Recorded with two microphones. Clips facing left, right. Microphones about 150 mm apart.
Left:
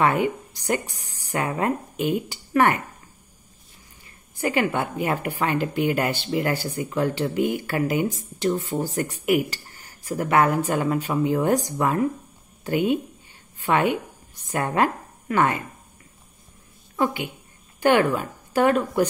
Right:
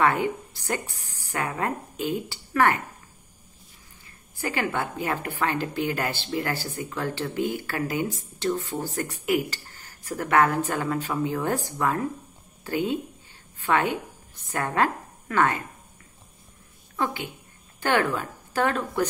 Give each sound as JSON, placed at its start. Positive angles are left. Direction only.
{"t": 0.0, "sound": "a woman's voice", "side_deg": 15}
{"t": 4.4, "sound": "a woman's voice", "side_deg": 15}
{"t": 16.9, "sound": "a woman's voice", "side_deg": 15}